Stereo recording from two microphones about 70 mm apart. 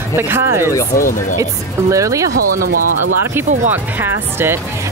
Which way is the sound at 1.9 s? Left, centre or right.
Right.